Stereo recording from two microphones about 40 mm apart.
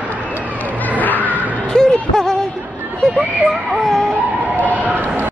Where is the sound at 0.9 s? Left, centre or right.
Left.